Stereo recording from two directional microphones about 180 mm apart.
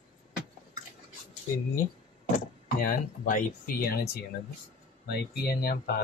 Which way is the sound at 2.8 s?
50° left (ahead or behind).